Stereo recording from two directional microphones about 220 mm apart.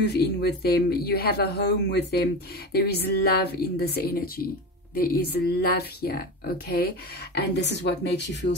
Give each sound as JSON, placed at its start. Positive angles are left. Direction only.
{"t": 0.0, "sound": "speech", "side_deg": 50}